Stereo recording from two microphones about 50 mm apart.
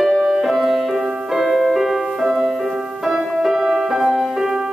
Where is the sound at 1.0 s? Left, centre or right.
Centre.